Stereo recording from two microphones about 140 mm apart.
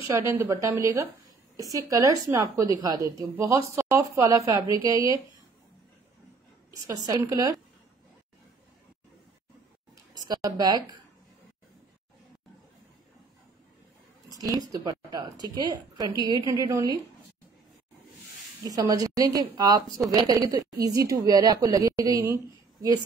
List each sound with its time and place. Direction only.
0.3 s a woman's voice: 20° right (ahead or behind)
6.8 s a woman's voice: 25° right (ahead or behind)
10.1 s a woman's voice: 25° right (ahead or behind)
14.4 s a woman's voice: 25° right (ahead or behind)
18.6 s a woman's voice: 25° right (ahead or behind)